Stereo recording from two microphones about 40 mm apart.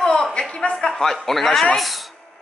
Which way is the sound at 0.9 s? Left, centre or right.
Centre.